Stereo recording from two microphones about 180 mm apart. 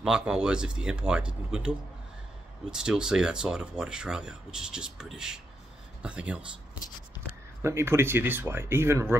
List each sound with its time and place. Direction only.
0.0 s speech: 5° right (ahead or behind)